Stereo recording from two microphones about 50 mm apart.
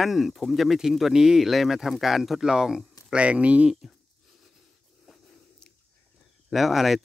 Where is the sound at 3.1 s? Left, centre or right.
Right.